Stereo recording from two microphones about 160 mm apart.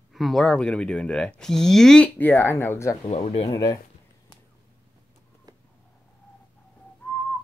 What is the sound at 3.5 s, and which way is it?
Speech, 20° left (ahead or behind).